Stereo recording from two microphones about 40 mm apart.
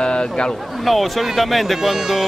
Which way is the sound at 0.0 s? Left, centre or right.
Left.